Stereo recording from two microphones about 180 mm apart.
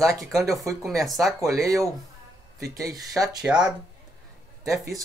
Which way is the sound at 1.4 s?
20° right (ahead or behind).